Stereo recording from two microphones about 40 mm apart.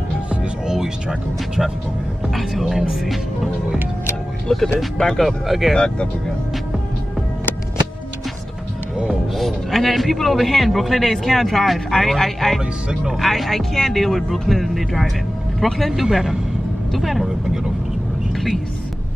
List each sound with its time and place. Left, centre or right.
0.4 s music: centre
2.5 s speech: centre
4.5 s speech: centre
5.2 s a man's voice: centre
9.3 s a man's voice: centre
16.0 s a man's voice: centre